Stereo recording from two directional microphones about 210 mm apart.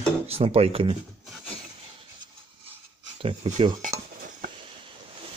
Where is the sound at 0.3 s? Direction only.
30° right (ahead or behind).